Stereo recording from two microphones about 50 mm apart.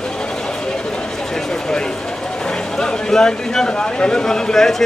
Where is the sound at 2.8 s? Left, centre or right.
Centre.